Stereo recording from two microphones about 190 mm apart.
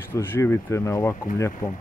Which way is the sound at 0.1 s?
10° left (ahead or behind).